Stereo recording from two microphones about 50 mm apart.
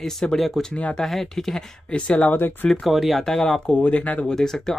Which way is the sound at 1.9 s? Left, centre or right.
Left.